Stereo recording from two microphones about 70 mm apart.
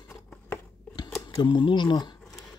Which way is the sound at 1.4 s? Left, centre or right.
Left.